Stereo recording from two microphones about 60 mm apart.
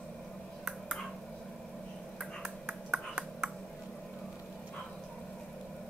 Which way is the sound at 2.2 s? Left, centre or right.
Centre.